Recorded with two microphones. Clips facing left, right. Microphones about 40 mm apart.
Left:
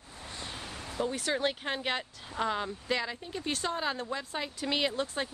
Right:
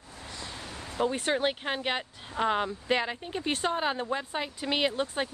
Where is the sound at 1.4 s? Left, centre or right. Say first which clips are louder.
Right 2 dB; centre.